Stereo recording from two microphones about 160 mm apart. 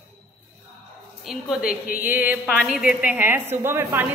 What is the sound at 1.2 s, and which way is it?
A woman's voice, centre (ahead or behind).